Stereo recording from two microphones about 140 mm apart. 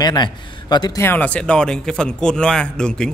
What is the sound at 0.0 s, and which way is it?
A man's voice, 30° left (ahead or behind).